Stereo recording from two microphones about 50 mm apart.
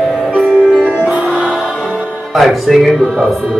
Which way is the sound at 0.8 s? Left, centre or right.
Centre.